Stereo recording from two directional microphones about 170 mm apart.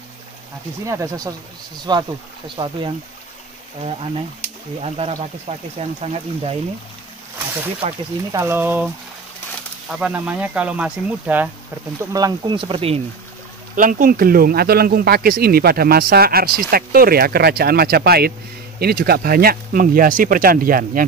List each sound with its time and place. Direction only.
0.8 s speech: 20° right (ahead or behind)
5.8 s speech: 35° right (ahead or behind)
7.8 s speech: 40° right (ahead or behind)
8.3 s speech: 15° right (ahead or behind)
9.8 s speech: 5° right (ahead or behind)
12.0 s speech: 20° right (ahead or behind)
13.7 s speech: 55° right (ahead or behind)